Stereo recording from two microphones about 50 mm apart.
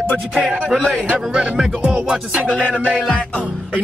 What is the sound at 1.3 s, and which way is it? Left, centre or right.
Music, centre.